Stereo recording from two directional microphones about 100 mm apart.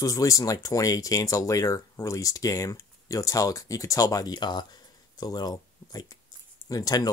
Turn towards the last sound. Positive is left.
turn(degrees=40)  # may be behind; listen again after turning